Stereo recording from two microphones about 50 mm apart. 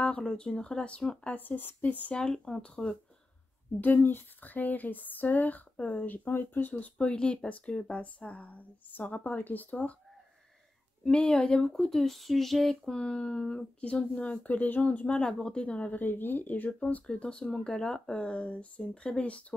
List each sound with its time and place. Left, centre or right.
0.2 s speech: centre
1.2 s speech: left
2.1 s speech: centre
3.8 s speech: left
6.7 s speech: left
11.1 s speech: centre
12.9 s speech: centre
15.0 s speech: centre; by 16.7 s left
16.8 s speech: centre